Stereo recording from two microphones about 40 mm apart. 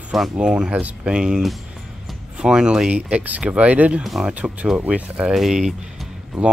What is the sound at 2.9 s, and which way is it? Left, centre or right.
Speech, right.